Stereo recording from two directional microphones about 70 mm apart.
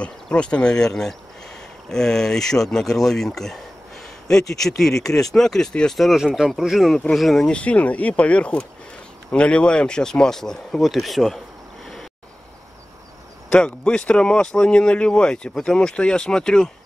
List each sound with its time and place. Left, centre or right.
0.0 s speech: centre
4.6 s speech: centre
13.5 s speech: centre